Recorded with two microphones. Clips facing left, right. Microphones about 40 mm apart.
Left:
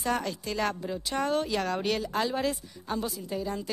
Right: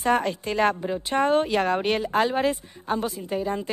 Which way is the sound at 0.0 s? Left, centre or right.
Right.